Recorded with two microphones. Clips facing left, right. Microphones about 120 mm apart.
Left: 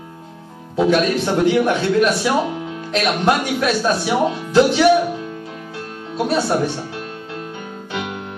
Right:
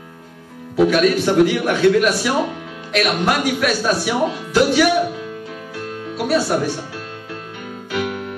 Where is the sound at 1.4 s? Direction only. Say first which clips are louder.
Left 1 dB; 25° left (ahead or behind).